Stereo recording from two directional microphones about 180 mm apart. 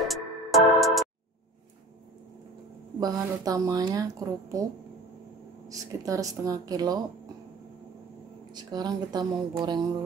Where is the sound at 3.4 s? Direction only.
20° right (ahead or behind).